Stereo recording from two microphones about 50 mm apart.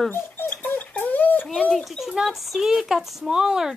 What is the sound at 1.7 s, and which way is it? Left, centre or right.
Speech, centre.